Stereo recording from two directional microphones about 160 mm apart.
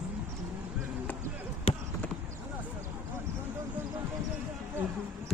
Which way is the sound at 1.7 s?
35° left (ahead or behind).